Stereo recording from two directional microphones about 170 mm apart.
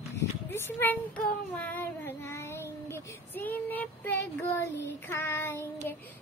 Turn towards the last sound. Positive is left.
turn(degrees=15)  # may be behind; listen again after turning